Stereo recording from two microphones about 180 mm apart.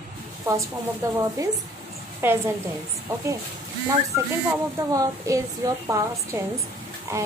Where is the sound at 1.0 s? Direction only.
15° right (ahead or behind).